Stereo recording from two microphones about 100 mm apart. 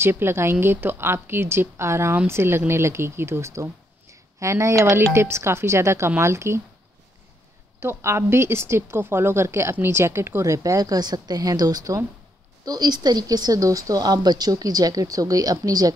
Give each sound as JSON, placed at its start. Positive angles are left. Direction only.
{"t": 0.0, "sound": "speech", "side_deg": -25}
{"t": 7.8, "sound": "a woman's voice", "side_deg": -25}